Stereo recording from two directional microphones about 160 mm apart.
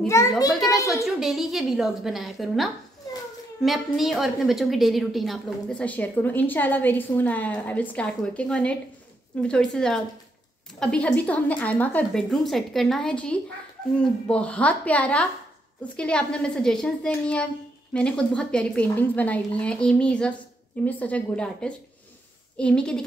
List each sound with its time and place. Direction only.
0.1 s a woman's voice: 20° left (ahead or behind)
1.0 s a woman's voice: centre (ahead or behind)